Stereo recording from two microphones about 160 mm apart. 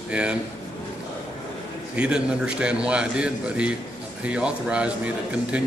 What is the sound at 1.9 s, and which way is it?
A man's voice, 5° right (ahead or behind).